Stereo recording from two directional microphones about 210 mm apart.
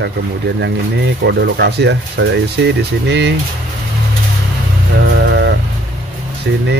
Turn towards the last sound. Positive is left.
turn(degrees=-55)  # may be behind; listen again after turning